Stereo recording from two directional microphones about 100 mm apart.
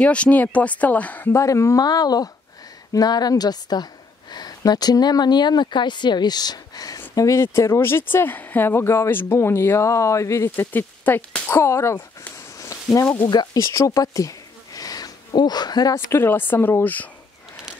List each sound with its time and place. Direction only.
0.0 s speech: 10° left (ahead or behind)
1.3 s a woman's voice: 30° left (ahead or behind)
10.5 s speech: 20° left (ahead or behind)
13.0 s speech: 20° left (ahead or behind)
13.3 s speech: 45° left (ahead or behind)
13.6 s a sound: 30° left (ahead or behind)
15.9 s speech: 25° left (ahead or behind)